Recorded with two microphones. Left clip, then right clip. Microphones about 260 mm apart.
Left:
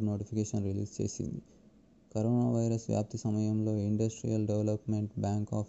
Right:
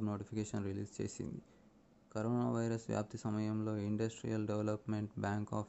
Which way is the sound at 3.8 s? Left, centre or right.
Centre.